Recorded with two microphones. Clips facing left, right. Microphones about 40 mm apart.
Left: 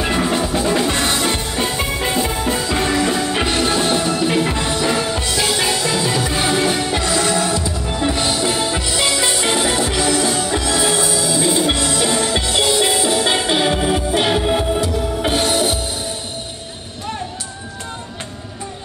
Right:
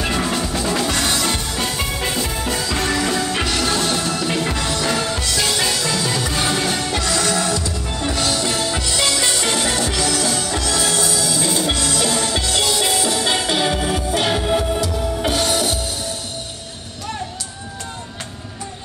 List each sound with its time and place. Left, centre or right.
0.0 s music: centre
3.4 s music: left